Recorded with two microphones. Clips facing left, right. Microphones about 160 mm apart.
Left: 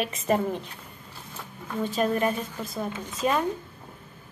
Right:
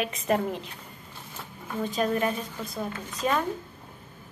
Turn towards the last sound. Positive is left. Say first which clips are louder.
# left 2 dB
turn(degrees=5)  # may be behind; listen again after turning